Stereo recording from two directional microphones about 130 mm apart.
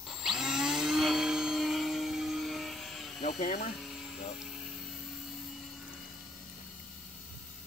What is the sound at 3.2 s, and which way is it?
Speech, 75° left (ahead or behind).